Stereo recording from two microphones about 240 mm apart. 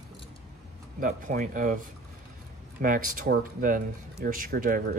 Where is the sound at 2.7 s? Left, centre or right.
Right.